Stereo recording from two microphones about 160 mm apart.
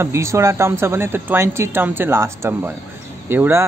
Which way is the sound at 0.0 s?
15° right (ahead or behind).